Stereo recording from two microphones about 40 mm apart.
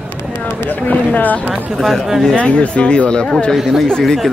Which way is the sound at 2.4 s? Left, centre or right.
Left.